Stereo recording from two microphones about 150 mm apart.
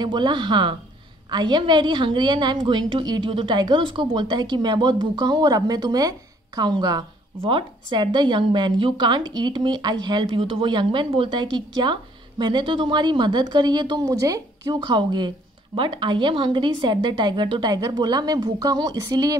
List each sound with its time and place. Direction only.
0.0 s a woman's voice: 30° right (ahead or behind)